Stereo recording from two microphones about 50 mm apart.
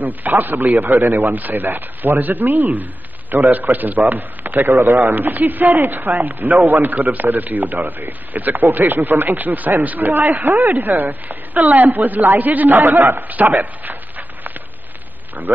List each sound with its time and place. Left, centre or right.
0.0 s a man's voice: right
1.3 s a man's voice: right
10.8 s a man's voice: right